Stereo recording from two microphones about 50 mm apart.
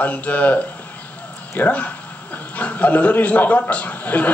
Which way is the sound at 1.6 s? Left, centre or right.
Left.